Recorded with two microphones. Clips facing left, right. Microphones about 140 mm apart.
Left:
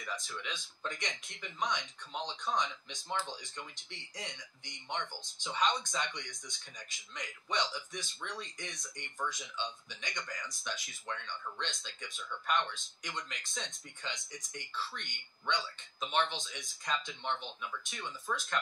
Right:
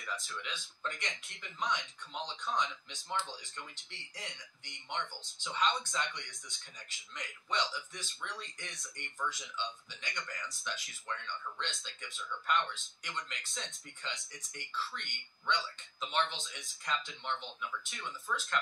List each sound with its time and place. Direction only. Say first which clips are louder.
0.0 s speech: left 1 dB; 15° left (ahead or behind)
13.3 s speech: left 1 dB; 15° left (ahead or behind)